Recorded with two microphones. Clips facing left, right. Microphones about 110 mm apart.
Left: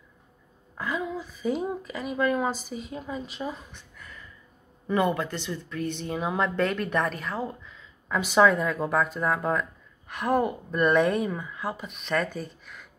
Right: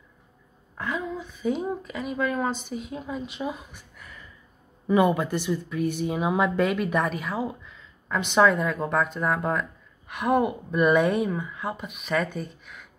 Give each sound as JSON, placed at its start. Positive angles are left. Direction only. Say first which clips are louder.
{"t": 0.7, "sound": "a woman's voice", "louder": "even", "side_deg": 0}